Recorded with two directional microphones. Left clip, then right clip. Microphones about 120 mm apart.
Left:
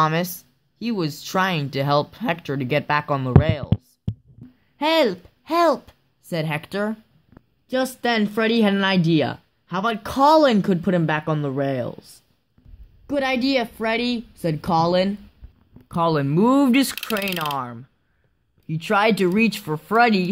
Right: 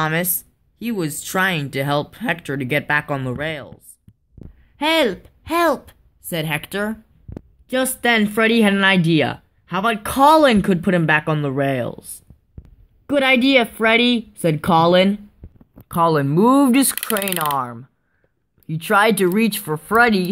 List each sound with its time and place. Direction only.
0.0 s speech: 25° left (ahead or behind)
4.7 s speech: 15° left (ahead or behind)
7.6 s speech: 5° right (ahead or behind)
13.1 s a woman's voice: 50° right (ahead or behind)
15.9 s speech: centre (ahead or behind)